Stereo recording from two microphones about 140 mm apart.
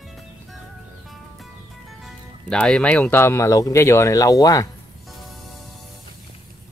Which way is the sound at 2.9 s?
15° left (ahead or behind).